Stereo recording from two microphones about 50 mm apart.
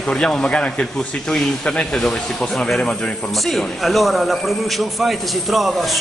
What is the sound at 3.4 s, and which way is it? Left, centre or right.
Speech, centre.